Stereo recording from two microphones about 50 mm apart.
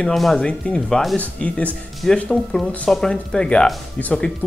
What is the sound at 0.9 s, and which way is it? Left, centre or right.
Speech, centre.